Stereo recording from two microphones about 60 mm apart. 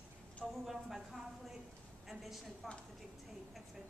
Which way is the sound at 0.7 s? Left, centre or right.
Centre.